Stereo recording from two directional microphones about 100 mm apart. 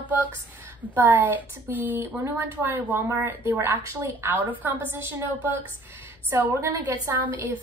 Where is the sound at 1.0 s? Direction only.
20° right (ahead or behind).